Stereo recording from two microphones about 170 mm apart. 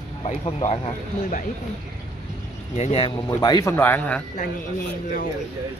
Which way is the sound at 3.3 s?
20° left (ahead or behind).